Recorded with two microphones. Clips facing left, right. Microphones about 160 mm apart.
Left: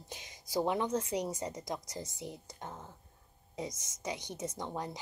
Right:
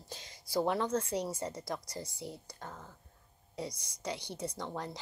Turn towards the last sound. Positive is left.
turn(degrees=15)  # may be behind; listen again after turning